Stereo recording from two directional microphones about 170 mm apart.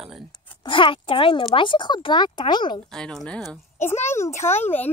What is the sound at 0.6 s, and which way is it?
Speech, 30° left (ahead or behind).